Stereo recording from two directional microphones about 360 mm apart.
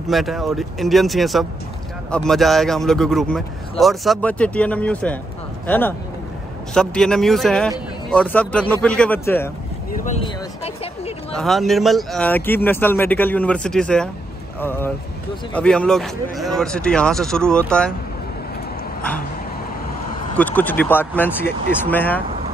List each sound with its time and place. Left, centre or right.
0.1 s a man's voice: centre
9.9 s a sound: centre
11.3 s a man's voice: centre
20.3 s a man's voice: centre